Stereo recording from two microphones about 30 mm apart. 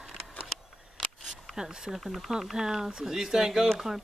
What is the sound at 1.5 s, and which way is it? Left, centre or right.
Speech, right.